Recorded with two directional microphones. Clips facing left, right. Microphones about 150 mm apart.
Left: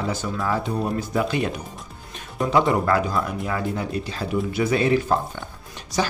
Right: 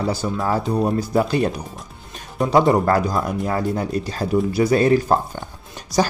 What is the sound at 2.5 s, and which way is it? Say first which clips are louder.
Speech: right 4 dB; 35° right (ahead or behind).